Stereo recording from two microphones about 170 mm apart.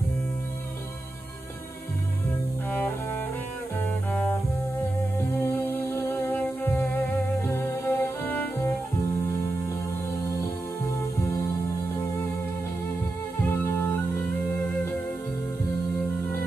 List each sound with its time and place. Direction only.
2.7 s cello: 10° left (ahead or behind)
3.8 s bowed string instrument: 10° left (ahead or behind)
5.4 s music: 15° left (ahead or behind)
13.5 s music: 15° left (ahead or behind)